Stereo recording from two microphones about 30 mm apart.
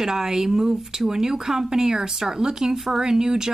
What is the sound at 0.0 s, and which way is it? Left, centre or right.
Speech, centre.